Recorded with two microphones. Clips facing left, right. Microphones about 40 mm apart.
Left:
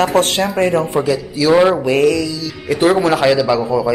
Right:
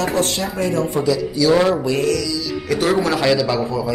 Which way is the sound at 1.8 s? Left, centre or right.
Left.